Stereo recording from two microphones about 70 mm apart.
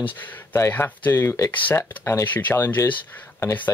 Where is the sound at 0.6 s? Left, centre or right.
Left.